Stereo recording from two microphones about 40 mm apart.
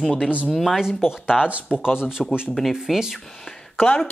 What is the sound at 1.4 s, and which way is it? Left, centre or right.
Speech, right.